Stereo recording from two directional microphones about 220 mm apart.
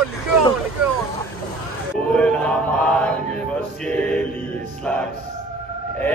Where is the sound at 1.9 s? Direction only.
5° left (ahead or behind).